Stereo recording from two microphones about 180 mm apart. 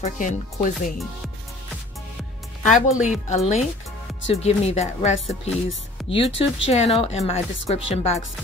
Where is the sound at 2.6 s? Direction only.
45° left (ahead or behind).